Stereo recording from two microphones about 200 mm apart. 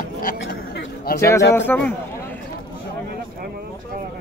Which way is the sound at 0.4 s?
55° left (ahead or behind).